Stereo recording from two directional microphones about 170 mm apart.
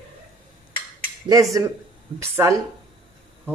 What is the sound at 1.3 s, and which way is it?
Speech, 20° right (ahead or behind).